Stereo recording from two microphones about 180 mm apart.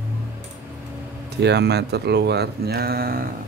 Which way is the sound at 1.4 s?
70° right (ahead or behind).